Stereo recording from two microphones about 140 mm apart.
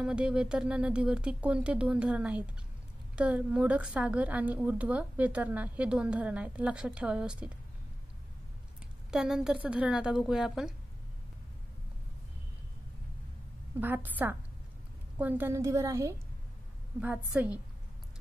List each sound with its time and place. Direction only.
0.0 s a woman's voice: 5° right (ahead or behind)
9.1 s a woman's voice: 5° right (ahead or behind)
13.7 s a woman's voice: 15° right (ahead or behind)
17.0 s a woman's voice: 10° right (ahead or behind)